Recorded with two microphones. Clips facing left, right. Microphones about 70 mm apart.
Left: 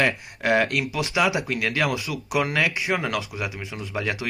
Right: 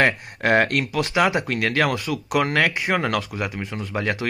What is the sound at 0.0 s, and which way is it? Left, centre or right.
Speech, right.